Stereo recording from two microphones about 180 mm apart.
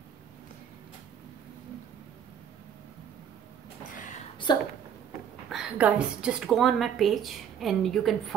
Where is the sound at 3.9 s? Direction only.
45° left (ahead or behind).